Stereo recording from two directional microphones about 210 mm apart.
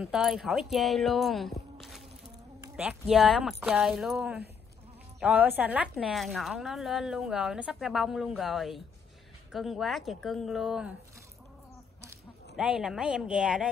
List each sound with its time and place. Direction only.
0.0 s speech: centre (ahead or behind)
12.5 s speech: 5° right (ahead or behind)